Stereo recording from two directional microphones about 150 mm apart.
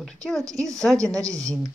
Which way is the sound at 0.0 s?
Centre (ahead or behind).